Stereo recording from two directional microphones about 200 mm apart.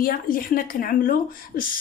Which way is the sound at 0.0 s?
45° left (ahead or behind).